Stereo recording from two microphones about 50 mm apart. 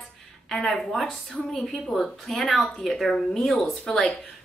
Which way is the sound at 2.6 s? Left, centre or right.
Centre.